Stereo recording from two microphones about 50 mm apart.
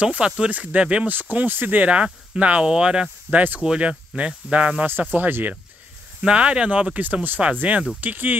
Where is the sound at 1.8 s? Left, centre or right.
Right.